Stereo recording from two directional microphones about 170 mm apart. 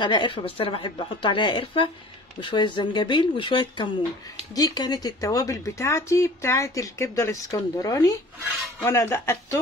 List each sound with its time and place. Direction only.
0.0 s speech: 25° left (ahead or behind)